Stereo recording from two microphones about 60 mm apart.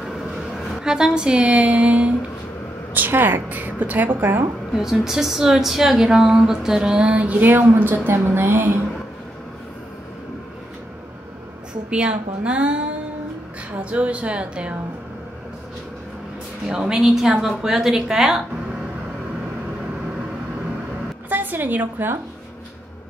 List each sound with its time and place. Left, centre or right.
0.8 s a woman's voice: centre
2.9 s speech: right
4.7 s a woman's voice: centre; by 8.7 s right
11.9 s a woman's voice: centre
16.6 s speech: centre
21.3 s a woman's voice: right